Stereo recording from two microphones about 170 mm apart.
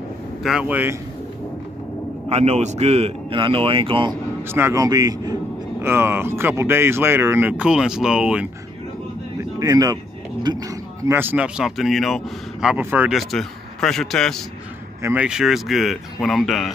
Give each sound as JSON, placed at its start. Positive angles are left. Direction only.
{"t": 0.4, "sound": "a man's voice", "side_deg": -5}
{"t": 2.2, "sound": "a man's voice", "side_deg": -40}
{"t": 4.4, "sound": "a man's voice", "side_deg": -15}
{"t": 9.6, "sound": "speech", "side_deg": -20}
{"t": 15.0, "sound": "speech", "side_deg": -15}
{"t": 15.2, "sound": "speech", "side_deg": -5}